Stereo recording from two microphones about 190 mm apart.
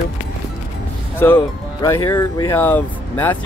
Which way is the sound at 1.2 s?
10° left (ahead or behind).